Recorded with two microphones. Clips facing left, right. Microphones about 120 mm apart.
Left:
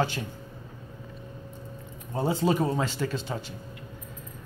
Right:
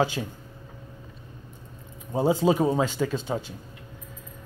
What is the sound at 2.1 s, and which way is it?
Speech, 15° right (ahead or behind).